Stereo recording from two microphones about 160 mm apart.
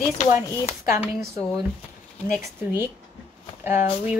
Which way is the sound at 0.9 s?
15° right (ahead or behind).